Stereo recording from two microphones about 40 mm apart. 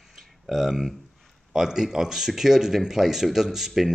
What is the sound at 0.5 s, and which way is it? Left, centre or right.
Speech, centre.